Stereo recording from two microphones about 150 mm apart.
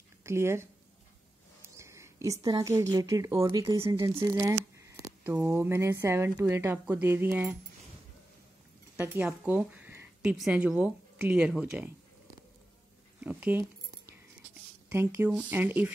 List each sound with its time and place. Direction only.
0.2 s speech: 20° right (ahead or behind)
1.6 s a sound: 20° right (ahead or behind)
2.4 s speech: 25° right (ahead or behind)
5.2 s speech: 15° right (ahead or behind)
8.9 s speech: 15° right (ahead or behind)
13.2 s speech: 10° right (ahead or behind)
14.9 s speech: 20° right (ahead or behind)